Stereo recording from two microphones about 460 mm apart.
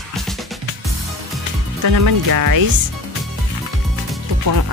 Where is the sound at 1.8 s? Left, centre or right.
Right.